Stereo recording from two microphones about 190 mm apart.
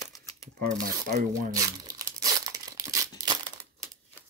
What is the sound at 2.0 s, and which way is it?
Crumpling, 20° right (ahead or behind).